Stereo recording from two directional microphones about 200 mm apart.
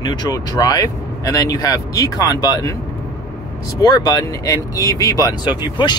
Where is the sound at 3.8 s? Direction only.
20° left (ahead or behind).